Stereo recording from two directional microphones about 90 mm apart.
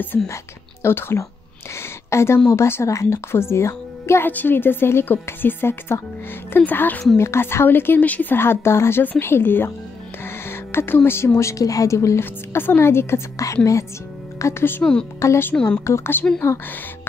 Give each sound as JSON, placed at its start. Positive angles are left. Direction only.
{"t": 0.1, "sound": "a woman's voice", "side_deg": 30}
{"t": 10.2, "sound": "music", "side_deg": 25}
{"t": 11.1, "sound": "a woman's voice", "side_deg": 25}
{"t": 14.8, "sound": "speech", "side_deg": 10}
{"t": 15.1, "sound": "a woman's voice", "side_deg": 30}
{"t": 15.5, "sound": "speech", "side_deg": 10}
{"t": 15.8, "sound": "speech", "side_deg": 25}